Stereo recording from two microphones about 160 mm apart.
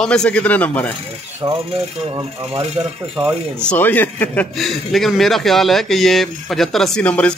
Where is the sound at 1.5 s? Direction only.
35° right (ahead or behind).